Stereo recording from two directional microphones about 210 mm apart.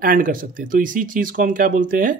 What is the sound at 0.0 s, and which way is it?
Speech, 40° right (ahead or behind).